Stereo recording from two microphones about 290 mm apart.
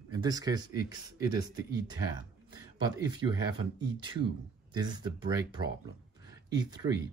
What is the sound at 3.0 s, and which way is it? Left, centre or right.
Speech, centre.